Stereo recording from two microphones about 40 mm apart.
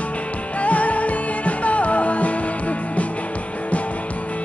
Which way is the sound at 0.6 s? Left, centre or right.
Left.